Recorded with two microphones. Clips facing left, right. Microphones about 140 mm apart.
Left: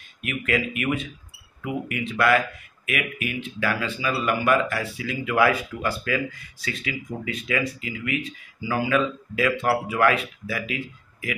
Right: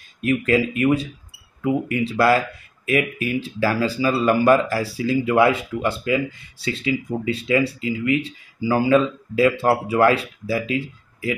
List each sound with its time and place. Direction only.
0.2 s speech: 35° right (ahead or behind)